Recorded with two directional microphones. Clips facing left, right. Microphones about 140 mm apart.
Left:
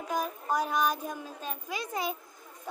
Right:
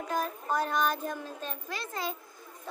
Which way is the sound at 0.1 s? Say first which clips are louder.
Left 1 dB; 10° left (ahead or behind).